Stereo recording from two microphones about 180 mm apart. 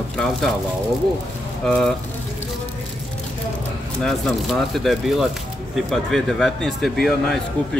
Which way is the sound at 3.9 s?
Centre (ahead or behind).